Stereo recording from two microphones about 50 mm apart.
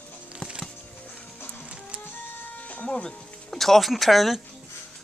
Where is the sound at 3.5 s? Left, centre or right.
Centre.